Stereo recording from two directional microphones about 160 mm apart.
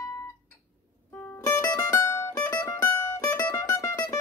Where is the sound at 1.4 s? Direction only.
20° left (ahead or behind).